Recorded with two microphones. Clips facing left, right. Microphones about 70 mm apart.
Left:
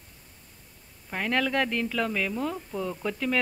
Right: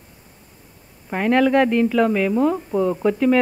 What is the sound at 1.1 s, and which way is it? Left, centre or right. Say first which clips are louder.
Speech: right 10 dB; right.